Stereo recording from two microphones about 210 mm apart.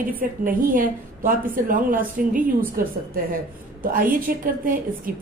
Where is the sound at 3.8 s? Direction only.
40° right (ahead or behind).